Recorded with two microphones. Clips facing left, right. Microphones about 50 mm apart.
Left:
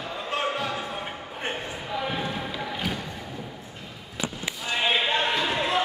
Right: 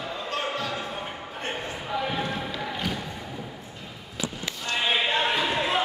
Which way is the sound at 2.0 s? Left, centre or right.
Centre.